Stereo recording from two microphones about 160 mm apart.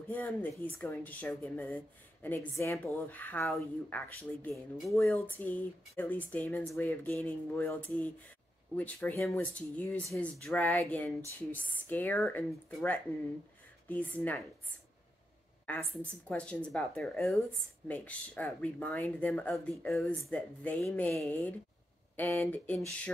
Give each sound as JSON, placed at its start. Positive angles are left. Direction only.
{"t": 0.1, "sound": "speech", "side_deg": 10}
{"t": 15.6, "sound": "a woman's voice", "side_deg": 10}